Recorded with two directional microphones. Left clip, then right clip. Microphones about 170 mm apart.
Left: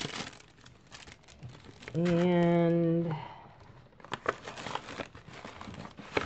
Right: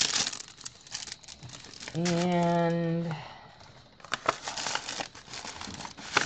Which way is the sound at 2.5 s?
35° left (ahead or behind).